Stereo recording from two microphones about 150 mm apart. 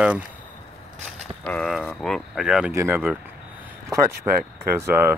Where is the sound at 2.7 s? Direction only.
15° right (ahead or behind).